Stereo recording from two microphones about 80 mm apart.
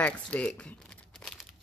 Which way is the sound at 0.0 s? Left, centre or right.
Centre.